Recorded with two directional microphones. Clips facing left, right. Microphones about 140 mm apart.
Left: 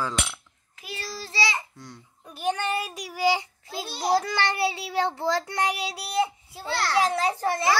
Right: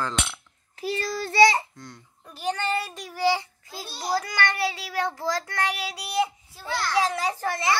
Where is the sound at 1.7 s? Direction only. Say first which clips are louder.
Even; 5° left (ahead or behind).